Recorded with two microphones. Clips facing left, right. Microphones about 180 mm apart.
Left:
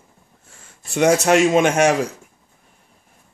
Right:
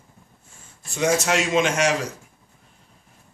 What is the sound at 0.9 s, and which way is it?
Speech, 65° left (ahead or behind).